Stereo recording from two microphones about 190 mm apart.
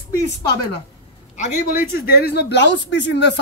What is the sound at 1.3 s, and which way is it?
Speech, 45° left (ahead or behind).